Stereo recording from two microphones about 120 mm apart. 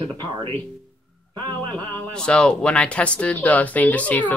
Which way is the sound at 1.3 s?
40° right (ahead or behind).